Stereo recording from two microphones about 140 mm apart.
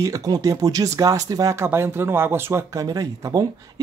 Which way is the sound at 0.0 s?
25° right (ahead or behind).